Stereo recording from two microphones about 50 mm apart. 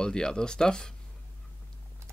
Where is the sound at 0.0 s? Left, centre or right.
Centre.